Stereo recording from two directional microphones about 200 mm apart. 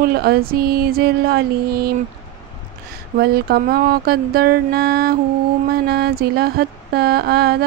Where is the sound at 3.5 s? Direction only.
50° right (ahead or behind).